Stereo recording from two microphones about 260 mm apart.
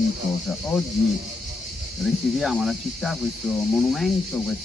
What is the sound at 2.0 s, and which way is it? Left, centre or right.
Speech, centre.